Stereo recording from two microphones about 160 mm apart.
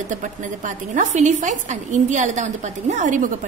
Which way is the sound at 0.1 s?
50° right (ahead or behind).